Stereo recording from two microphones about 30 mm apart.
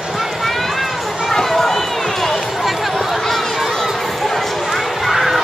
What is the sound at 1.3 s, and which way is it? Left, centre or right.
Run, centre.